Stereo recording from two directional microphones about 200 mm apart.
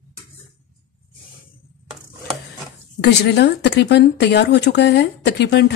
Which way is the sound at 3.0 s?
60° left (ahead or behind).